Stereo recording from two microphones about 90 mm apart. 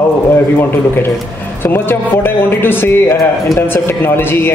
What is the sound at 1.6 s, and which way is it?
A man's voice, 25° left (ahead or behind).